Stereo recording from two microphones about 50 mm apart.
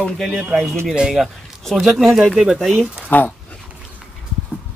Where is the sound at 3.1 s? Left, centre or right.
Left.